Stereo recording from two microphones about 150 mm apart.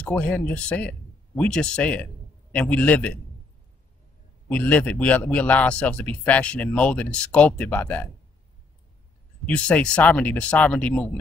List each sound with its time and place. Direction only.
0.0 s a man's voice: 10° left (ahead or behind)
4.5 s a man's voice: 10° left (ahead or behind)
9.5 s a man's voice: 5° left (ahead or behind)